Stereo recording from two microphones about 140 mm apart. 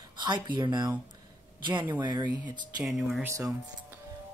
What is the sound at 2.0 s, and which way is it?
Speech, 30° right (ahead or behind).